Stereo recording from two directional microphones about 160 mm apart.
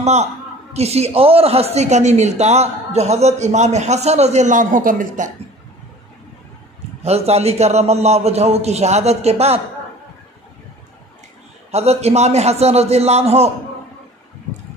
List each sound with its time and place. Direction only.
0.0 s a man's voice: 45° right (ahead or behind)
7.0 s a man's voice: 40° right (ahead or behind)
11.7 s a man's voice: 40° right (ahead or behind)